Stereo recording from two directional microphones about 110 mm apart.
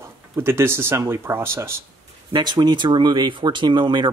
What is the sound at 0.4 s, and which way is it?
Speech, 25° right (ahead or behind).